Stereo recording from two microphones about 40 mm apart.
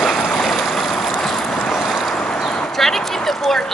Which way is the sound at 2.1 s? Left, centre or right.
Centre.